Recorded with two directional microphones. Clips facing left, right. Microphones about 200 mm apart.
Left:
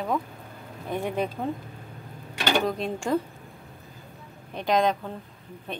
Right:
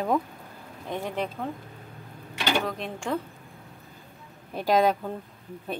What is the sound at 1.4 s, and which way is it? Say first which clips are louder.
Speech: left 3 dB; 20° left (ahead or behind).